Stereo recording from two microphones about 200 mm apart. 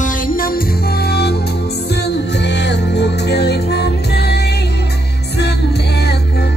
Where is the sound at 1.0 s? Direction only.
55° left (ahead or behind).